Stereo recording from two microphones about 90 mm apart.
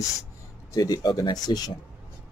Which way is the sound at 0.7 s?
45° left (ahead or behind).